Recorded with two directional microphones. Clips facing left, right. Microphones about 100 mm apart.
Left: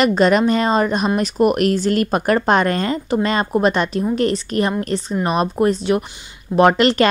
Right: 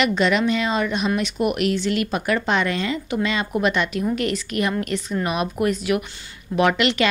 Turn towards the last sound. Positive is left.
turn(degrees=40)  # may be behind; listen again after turning